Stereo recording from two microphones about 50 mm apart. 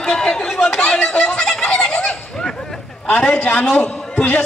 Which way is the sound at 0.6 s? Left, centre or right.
Left.